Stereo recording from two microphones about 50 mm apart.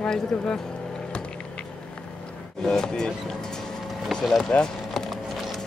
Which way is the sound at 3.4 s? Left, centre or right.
Centre.